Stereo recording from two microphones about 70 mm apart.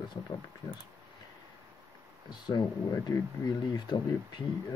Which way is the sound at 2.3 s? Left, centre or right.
Left.